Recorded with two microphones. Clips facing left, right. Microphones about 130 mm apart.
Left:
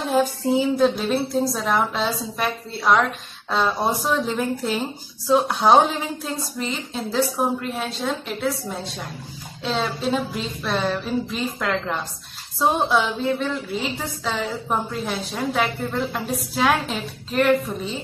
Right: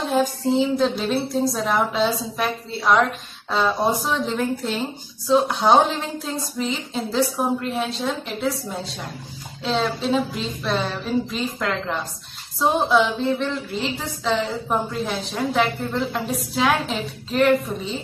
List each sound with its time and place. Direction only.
0.0 s a woman's voice: centre (ahead or behind)